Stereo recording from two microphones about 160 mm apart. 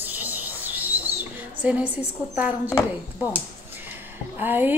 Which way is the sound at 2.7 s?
15° left (ahead or behind).